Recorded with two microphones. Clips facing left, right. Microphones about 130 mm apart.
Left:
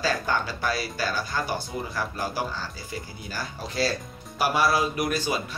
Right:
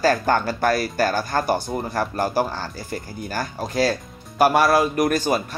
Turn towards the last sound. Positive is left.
turn(degrees=-50)  # may be behind; listen again after turning